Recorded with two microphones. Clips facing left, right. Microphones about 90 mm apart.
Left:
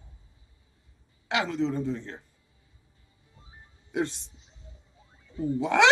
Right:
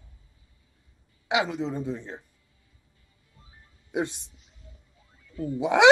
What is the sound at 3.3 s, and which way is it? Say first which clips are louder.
Music: left 3 dB; 25° left (ahead or behind).